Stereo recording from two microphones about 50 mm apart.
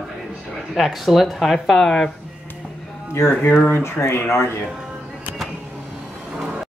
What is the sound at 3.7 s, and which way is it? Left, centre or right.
Speech, left.